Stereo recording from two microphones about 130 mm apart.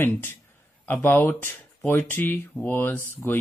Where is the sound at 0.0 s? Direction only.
15° left (ahead or behind).